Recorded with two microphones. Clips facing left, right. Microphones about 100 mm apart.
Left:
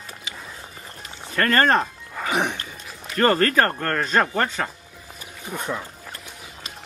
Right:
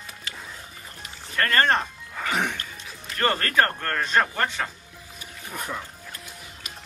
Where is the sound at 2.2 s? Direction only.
20° left (ahead or behind).